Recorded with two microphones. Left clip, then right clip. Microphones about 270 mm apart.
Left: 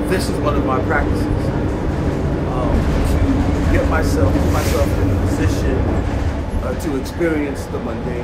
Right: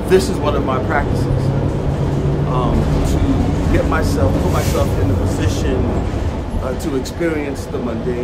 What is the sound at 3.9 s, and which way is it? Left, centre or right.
Speech, centre.